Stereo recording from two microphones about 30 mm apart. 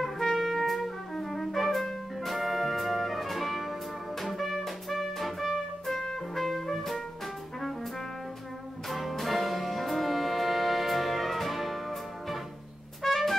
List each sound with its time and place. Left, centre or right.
0.0 s trumpet: centre
1.2 s music: centre
6.3 s trumpet: centre
6.7 s music: centre
8.8 s music: centre